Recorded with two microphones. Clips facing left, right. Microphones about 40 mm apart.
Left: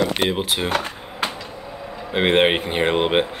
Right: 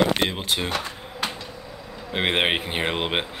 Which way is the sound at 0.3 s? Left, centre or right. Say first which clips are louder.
Left 4 dB; centre.